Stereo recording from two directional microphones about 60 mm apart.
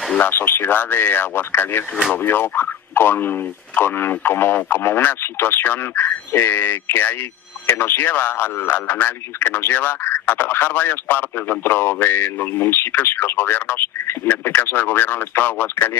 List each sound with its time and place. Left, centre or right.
0.2 s speech: left